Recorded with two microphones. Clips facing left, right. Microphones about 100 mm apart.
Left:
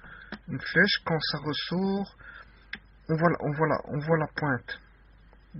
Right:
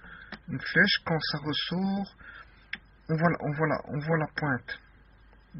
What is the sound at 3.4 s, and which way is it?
Speech, 20° left (ahead or behind).